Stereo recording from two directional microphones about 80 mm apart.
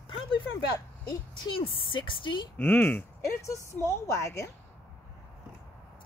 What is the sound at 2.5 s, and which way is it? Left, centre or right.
Speech, left.